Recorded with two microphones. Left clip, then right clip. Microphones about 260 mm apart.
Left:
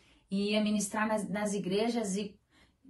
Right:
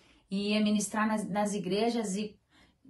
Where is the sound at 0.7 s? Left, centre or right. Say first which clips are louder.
Right 1 dB; centre.